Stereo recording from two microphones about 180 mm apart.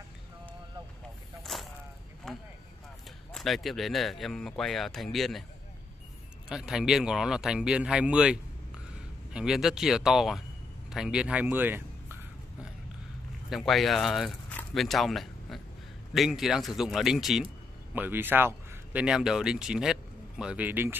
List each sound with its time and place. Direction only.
1.4 s a sound: centre (ahead or behind)
3.3 s speech: centre (ahead or behind)
6.5 s speech: 5° right (ahead or behind)
13.5 s speech: centre (ahead or behind)
14.5 s a sound: 5° left (ahead or behind)
16.1 s speech: centre (ahead or behind)